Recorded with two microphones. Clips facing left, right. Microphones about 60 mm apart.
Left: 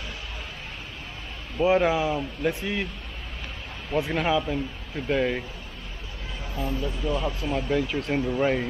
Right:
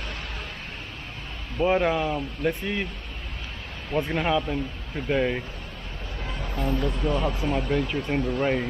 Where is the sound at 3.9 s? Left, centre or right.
Centre.